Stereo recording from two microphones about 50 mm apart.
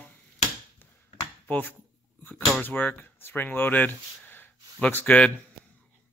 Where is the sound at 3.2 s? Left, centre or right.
Left.